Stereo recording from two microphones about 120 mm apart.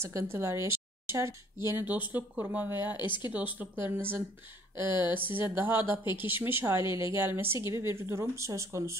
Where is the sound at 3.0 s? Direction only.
40° left (ahead or behind).